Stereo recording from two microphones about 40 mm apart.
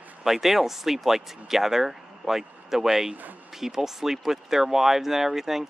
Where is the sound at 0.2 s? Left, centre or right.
Centre.